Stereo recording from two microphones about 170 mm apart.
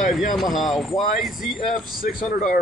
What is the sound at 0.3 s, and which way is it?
Speech, centre (ahead or behind).